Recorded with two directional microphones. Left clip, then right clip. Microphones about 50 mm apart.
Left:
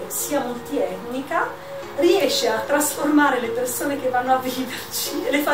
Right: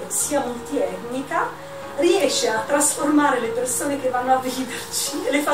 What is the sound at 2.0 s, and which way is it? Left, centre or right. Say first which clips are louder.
A woman's voice: left 1 dB; centre.